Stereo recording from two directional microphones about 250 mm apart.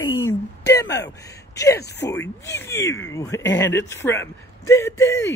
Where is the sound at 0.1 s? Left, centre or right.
Left.